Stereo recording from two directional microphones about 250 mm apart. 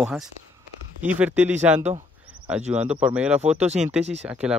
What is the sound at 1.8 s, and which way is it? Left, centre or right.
Speech, right.